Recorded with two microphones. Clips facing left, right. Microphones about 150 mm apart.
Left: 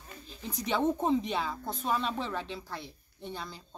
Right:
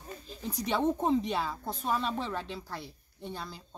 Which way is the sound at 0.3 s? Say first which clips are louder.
Right 2 dB; 35° right (ahead or behind).